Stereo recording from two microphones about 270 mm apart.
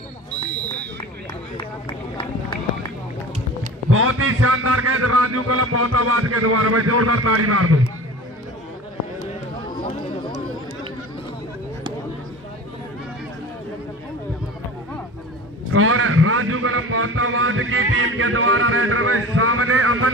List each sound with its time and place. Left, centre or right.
1.6 s run: centre
3.9 s a man's voice: right
15.7 s a man's voice: right